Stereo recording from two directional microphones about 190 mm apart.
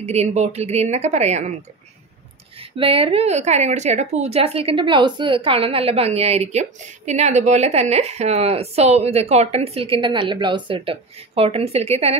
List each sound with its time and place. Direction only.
0.0 s a woman's voice: 35° right (ahead or behind)
2.6 s a woman's voice: 30° right (ahead or behind)